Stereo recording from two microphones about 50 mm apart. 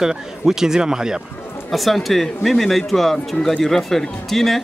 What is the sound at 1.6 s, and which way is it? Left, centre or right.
Speech, centre.